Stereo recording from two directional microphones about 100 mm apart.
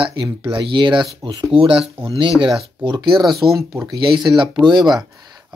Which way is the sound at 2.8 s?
50° right (ahead or behind).